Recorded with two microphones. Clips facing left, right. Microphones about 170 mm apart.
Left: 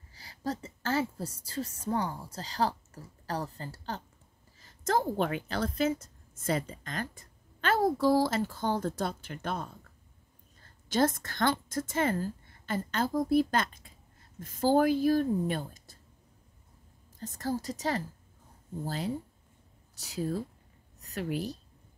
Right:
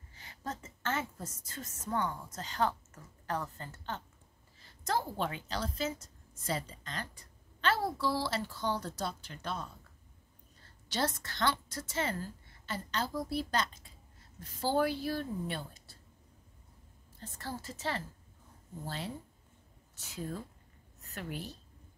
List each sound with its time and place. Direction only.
0.1 s a woman's voice: 35° left (ahead or behind); by 9.7 s 55° left (ahead or behind)
10.9 s a woman's voice: 50° left (ahead or behind)
17.2 s a woman's voice: 40° left (ahead or behind)
20.0 s a woman's voice: 35° left (ahead or behind)
21.0 s a sound: 40° left (ahead or behind)